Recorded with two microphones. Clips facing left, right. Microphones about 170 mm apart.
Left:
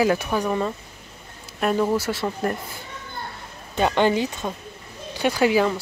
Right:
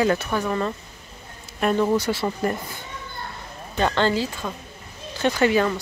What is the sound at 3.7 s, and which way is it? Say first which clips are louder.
Speech: left 2 dB; 15° left (ahead or behind).